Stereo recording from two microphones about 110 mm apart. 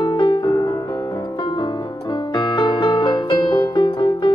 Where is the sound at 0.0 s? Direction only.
40° left (ahead or behind).